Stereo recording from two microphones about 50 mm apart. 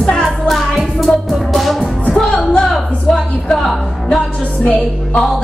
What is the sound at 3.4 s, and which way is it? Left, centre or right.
Music, centre.